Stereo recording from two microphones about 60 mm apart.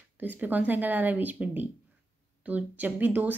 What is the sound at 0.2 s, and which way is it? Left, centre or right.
Speech, right.